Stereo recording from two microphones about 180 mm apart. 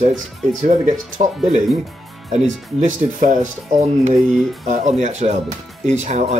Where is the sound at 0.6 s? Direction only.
40° right (ahead or behind).